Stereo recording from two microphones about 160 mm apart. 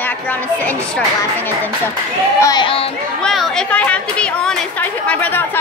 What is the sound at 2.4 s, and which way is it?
Speech, 30° left (ahead or behind).